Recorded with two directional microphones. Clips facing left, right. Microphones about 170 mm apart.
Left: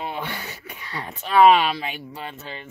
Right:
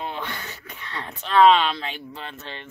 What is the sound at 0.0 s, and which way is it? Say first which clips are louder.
Speech: left 1 dB; 10° left (ahead or behind).